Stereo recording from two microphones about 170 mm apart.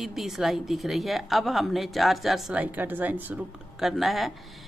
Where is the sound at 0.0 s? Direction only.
Centre (ahead or behind).